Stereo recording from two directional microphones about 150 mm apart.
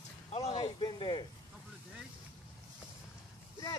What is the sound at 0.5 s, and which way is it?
Speech, 30° left (ahead or behind).